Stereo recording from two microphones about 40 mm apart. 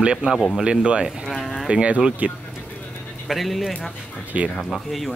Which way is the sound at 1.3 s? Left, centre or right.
Centre.